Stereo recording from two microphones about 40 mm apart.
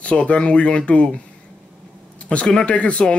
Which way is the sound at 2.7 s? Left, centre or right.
Left.